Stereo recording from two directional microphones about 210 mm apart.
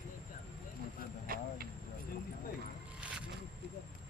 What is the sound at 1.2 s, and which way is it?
Vehicle, 45° right (ahead or behind).